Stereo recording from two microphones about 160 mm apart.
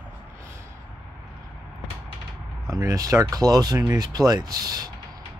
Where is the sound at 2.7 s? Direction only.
20° right (ahead or behind).